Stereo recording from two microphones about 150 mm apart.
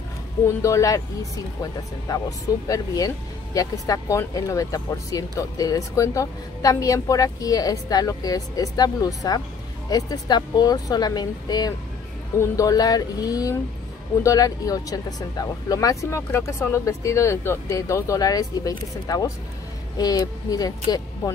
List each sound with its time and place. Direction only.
0.6 s speech: 20° left (ahead or behind)
2.0 s speech: 25° left (ahead or behind)